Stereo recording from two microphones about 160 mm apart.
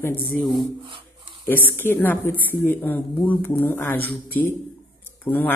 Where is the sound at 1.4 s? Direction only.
15° left (ahead or behind).